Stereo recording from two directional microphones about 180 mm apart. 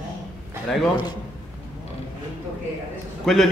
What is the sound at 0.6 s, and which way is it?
Speech, centre (ahead or behind).